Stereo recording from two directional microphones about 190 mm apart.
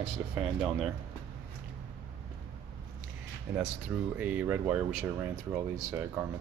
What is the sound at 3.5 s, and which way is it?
Speech, 10° right (ahead or behind).